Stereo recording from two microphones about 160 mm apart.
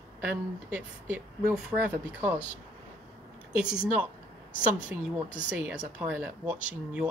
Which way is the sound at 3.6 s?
5° right (ahead or behind).